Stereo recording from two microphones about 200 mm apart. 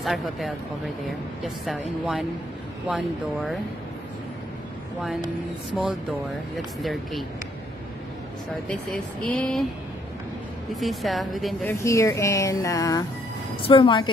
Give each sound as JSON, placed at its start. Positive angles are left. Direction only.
{"t": 0.0, "sound": "a woman's voice", "side_deg": 0}
{"t": 6.5, "sound": "a woman's voice", "side_deg": 0}
{"t": 9.3, "sound": "a woman's voice", "side_deg": 0}
{"t": 10.7, "sound": "a woman's voice", "side_deg": 0}
{"t": 11.8, "sound": "a woman's voice", "side_deg": 15}